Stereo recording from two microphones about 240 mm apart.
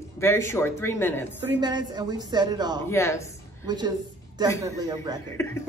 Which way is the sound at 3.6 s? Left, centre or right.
Centre.